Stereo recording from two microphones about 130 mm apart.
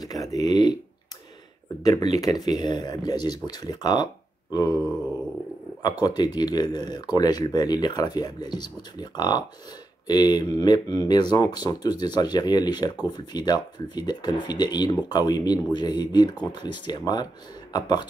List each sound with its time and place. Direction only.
0.0 s speech: 30° left (ahead or behind)
1.8 s speech: 25° left (ahead or behind)
5.8 s speech: 30° left (ahead or behind)